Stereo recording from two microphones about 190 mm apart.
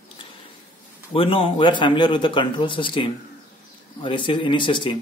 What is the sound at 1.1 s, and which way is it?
Speech, 30° left (ahead or behind).